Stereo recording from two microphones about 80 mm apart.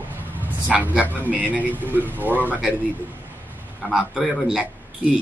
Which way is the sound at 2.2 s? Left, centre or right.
Left.